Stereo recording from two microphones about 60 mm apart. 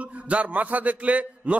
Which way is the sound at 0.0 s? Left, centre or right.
Right.